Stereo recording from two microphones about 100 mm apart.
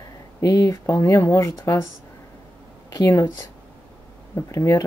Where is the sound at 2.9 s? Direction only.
35° left (ahead or behind).